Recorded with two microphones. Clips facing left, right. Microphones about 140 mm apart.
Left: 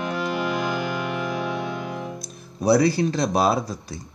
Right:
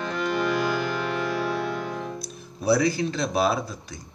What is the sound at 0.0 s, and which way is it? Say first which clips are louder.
Music: even; 10° left (ahead or behind).